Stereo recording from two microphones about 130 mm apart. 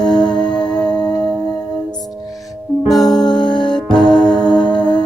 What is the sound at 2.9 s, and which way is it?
Music, centre (ahead or behind).